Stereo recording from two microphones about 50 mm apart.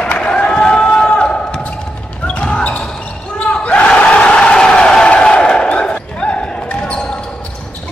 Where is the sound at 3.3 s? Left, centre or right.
Left.